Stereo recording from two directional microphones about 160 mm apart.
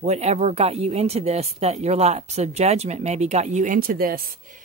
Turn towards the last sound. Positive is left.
turn(degrees=-65)  # may be behind; listen again after turning